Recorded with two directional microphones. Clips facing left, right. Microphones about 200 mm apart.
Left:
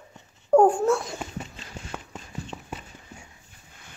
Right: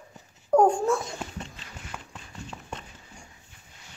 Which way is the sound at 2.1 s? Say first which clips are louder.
Left 4 dB; 5° left (ahead or behind).